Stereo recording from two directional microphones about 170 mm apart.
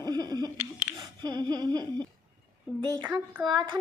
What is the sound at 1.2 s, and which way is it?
Child singing, 25° right (ahead or behind).